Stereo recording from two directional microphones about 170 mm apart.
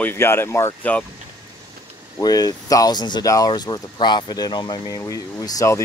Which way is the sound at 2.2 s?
20° left (ahead or behind).